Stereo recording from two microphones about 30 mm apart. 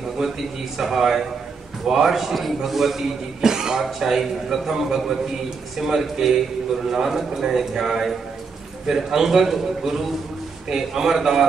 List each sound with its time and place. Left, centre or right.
0.2 s a man's voice: centre
4.0 s a man's voice: centre